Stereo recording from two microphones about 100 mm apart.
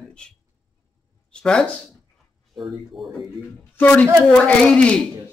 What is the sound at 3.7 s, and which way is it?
Speech, 20° left (ahead or behind).